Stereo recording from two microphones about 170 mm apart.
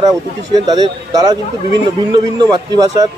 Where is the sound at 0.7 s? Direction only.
20° right (ahead or behind).